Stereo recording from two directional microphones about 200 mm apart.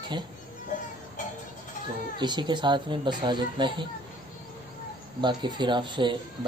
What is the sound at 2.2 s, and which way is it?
Speech, 20° right (ahead or behind).